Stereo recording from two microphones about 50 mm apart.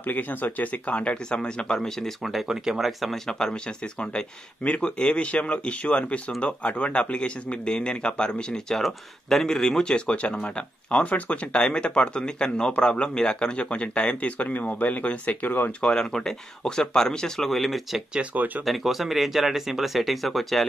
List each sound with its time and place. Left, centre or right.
0.0 s speech: left; by 2.1 s centre
2.4 s speech: centre
3.3 s speech: centre
4.6 s speech: left
15.8 s speech: centre